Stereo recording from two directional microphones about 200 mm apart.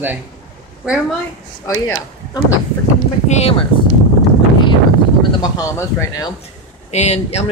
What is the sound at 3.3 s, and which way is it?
Speech, 30° left (ahead or behind).